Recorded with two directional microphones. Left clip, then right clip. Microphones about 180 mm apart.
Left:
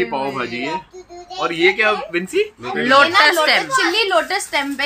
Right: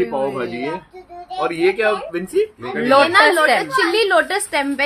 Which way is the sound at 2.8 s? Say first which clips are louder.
Left 1 dB; 15° right (ahead or behind).